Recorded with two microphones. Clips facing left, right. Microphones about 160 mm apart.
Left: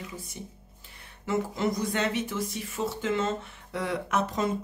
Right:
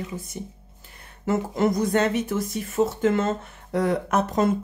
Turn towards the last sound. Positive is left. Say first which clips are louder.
# right 6 dB
turn(degrees=-50)  # may be behind; listen again after turning